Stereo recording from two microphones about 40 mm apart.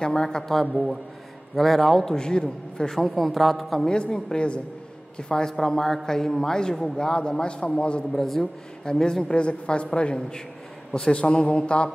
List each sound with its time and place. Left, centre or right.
0.0 s a man's voice: centre
0.5 s a man's voice: centre
2.1 s a man's voice: left; by 3.8 s centre
3.8 s a woman's voice: centre
8.1 s a man's voice: centre
9.3 s a woman's voice: left